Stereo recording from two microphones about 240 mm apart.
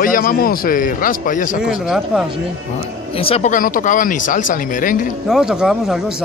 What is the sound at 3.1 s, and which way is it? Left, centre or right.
Speech, left.